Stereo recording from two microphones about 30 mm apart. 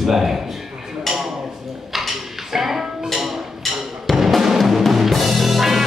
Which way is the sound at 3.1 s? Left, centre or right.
Centre.